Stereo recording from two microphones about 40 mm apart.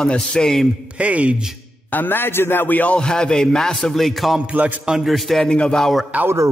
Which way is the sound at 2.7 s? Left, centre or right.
Left.